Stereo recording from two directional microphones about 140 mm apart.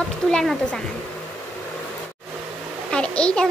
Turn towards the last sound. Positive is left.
turn(degrees=5)  # may be behind; listen again after turning